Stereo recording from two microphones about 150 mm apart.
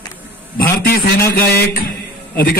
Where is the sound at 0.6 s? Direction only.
90° left.